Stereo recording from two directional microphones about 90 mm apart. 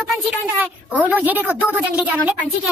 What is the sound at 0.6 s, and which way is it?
A child's voice, 20° right (ahead or behind).